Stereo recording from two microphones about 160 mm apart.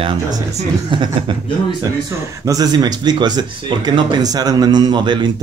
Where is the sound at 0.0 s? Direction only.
25° right (ahead or behind).